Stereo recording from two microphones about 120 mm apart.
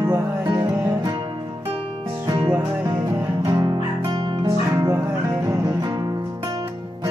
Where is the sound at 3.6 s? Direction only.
40° right (ahead or behind).